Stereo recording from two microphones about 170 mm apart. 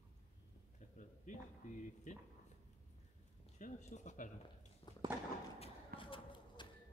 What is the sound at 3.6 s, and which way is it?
Speech, 45° left (ahead or behind).